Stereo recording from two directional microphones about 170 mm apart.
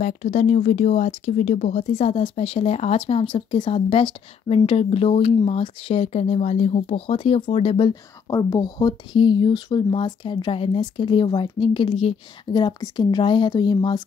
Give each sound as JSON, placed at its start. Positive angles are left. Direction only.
{"t": 0.0, "sound": "speech", "side_deg": 45}
{"t": 7.9, "sound": "speech", "side_deg": 20}